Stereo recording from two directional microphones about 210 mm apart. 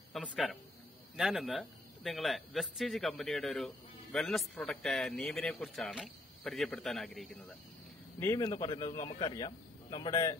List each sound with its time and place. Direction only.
0.1 s a man's voice: centre (ahead or behind)
8.2 s speech: 15° left (ahead or behind)